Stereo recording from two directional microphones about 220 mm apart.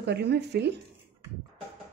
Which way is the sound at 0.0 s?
50° right (ahead or behind).